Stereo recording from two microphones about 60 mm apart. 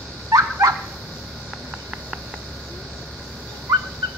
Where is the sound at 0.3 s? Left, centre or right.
Right.